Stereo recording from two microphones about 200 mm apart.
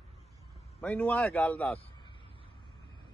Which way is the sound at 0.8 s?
5° left (ahead or behind).